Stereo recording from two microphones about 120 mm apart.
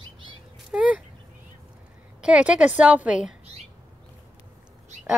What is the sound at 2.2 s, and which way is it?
Speech, 10° right (ahead or behind).